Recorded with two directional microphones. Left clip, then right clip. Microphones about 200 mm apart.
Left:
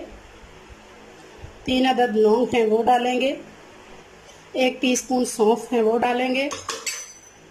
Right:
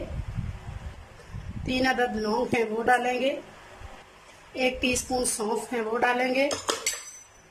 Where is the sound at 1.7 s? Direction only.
15° left (ahead or behind).